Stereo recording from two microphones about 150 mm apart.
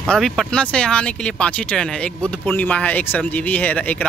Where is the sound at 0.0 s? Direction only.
Centre (ahead or behind).